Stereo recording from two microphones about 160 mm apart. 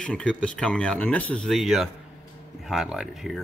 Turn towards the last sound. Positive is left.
turn(degrees=0)  # may be behind; listen again after turning